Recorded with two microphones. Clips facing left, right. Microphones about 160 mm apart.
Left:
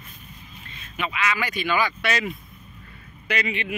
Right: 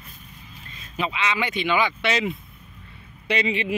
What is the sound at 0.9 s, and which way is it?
Speech, 30° right (ahead or behind).